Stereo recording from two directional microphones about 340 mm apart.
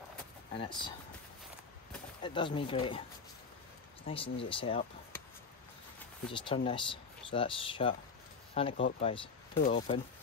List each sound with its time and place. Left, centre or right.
0.6 s speech: centre
2.2 s speech: centre
4.1 s speech: centre
6.3 s speech: centre